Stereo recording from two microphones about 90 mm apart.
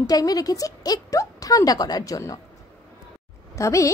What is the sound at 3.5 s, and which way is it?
Speech, 35° left (ahead or behind).